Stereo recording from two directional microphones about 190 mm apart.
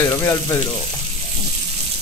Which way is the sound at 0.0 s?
15° left (ahead or behind).